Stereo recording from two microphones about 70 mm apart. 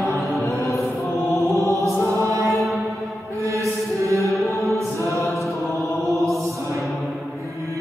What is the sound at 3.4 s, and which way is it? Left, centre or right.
Music, right.